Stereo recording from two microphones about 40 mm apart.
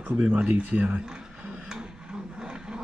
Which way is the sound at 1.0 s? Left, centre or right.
Centre.